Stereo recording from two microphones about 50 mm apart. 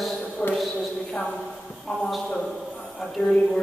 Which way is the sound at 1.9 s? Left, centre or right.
Centre.